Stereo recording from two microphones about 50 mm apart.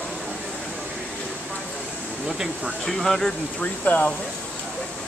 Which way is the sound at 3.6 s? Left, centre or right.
Left.